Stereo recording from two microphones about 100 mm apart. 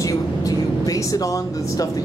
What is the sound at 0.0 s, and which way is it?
Speech, 35° left (ahead or behind).